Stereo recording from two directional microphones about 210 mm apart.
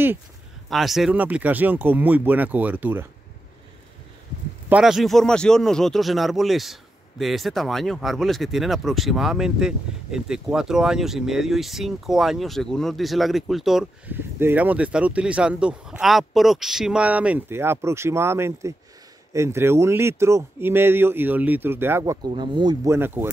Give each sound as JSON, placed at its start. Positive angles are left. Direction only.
{"t": 0.7, "sound": "speech", "side_deg": 0}
{"t": 4.6, "sound": "speech", "side_deg": -5}
{"t": 22.9, "sound": "speech", "side_deg": -10}